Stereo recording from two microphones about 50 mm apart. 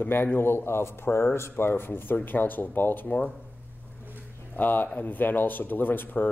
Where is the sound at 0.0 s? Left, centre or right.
Left.